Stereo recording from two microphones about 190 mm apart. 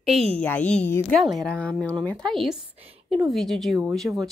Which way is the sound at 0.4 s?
5° left (ahead or behind).